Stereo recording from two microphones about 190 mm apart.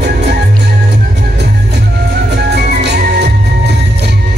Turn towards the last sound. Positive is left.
turn(degrees=-60)  # may be behind; listen again after turning